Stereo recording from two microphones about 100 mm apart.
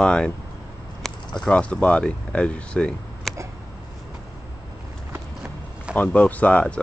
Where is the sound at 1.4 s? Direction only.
10° left (ahead or behind).